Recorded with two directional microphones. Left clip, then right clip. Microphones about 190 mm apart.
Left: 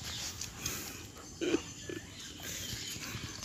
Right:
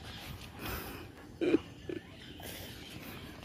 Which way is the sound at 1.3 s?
30° right (ahead or behind).